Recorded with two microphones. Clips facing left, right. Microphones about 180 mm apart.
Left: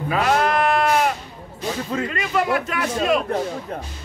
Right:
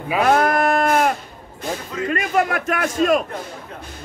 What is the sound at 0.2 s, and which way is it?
Sheep, 50° right (ahead or behind).